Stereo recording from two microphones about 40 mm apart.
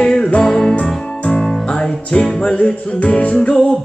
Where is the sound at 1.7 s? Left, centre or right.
Left.